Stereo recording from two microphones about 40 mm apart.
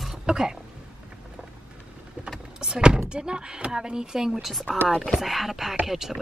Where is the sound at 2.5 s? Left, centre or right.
Centre.